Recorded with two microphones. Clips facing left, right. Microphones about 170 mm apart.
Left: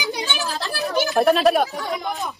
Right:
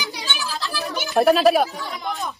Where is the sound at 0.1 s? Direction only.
45° left (ahead or behind).